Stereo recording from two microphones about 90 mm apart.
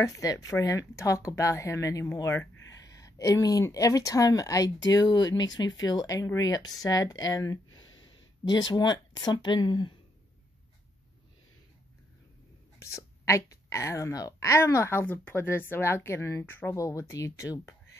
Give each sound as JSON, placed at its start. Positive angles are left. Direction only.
{"t": 0.0, "sound": "speech", "side_deg": 40}
{"t": 2.9, "sound": "a sound", "side_deg": 40}
{"t": 3.6, "sound": "speech", "side_deg": 40}
{"t": 12.7, "sound": "speech", "side_deg": 30}
{"t": 16.7, "sound": "speech", "side_deg": 35}